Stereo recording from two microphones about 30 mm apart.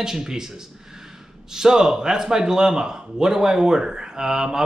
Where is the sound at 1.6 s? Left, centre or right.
Right.